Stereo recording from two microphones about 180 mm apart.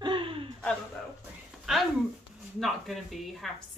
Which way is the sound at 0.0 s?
30° right (ahead or behind).